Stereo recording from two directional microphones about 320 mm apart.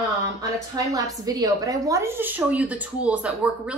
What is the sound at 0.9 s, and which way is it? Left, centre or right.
A woman's voice, centre.